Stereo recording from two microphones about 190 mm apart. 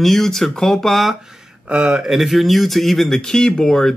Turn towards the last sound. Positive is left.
turn(degrees=0)  # may be behind; listen again after turning